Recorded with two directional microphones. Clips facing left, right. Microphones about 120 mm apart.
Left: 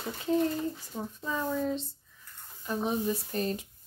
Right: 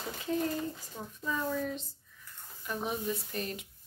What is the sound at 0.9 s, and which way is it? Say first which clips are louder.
Speech: right 1 dB; 25° left (ahead or behind).